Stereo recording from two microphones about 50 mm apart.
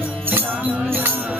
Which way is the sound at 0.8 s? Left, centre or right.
Right.